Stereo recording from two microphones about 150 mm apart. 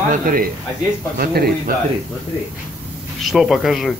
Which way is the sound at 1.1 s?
90° right.